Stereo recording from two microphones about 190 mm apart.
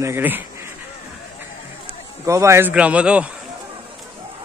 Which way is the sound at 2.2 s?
15° right (ahead or behind).